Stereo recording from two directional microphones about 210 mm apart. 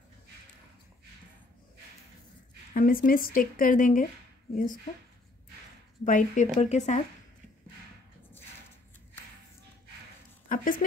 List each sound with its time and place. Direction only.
2.7 s speech: 45° left (ahead or behind)
6.0 s speech: 35° left (ahead or behind)
10.5 s speech: 40° left (ahead or behind)